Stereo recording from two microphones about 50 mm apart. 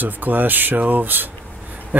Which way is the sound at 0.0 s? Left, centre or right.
Right.